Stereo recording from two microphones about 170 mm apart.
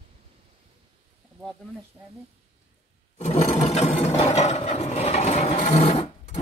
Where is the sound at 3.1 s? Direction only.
40° left (ahead or behind).